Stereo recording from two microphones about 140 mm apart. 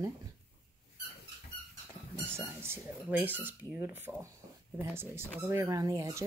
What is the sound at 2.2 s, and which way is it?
Speech, 15° right (ahead or behind).